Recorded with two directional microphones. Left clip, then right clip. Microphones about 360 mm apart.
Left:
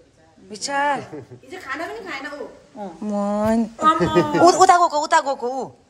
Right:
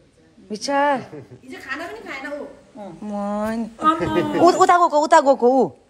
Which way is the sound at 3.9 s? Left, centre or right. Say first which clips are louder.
Left 1 dB; left.